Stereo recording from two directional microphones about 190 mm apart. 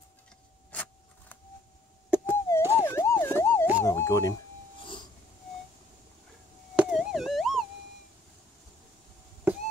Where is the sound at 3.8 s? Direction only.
15° left (ahead or behind).